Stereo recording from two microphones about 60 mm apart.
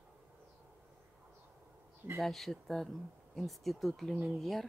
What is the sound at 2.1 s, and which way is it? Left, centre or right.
Speech, centre.